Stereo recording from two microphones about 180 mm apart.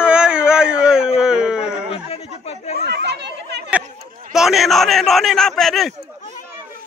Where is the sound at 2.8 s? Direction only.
70° right (ahead or behind).